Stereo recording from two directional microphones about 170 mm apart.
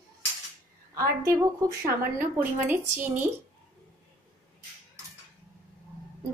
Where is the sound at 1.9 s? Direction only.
10° right (ahead or behind).